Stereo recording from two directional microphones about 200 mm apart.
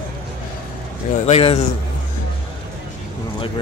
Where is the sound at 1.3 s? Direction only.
30° left (ahead or behind).